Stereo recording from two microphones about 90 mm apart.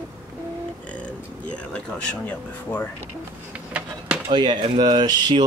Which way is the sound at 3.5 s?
15° right (ahead or behind).